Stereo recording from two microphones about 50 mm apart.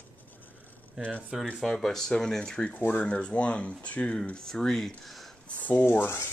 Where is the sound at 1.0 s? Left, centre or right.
Centre.